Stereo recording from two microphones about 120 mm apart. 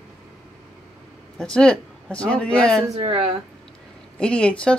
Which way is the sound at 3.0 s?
50° right (ahead or behind).